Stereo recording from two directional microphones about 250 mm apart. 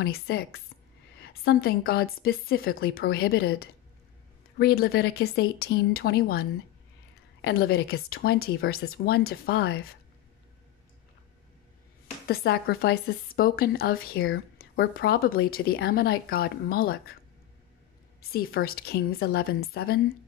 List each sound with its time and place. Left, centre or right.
0.0 s a woman's voice: left
7.4 s a woman's voice: left
12.3 s a woman's voice: left
18.3 s a woman's voice: left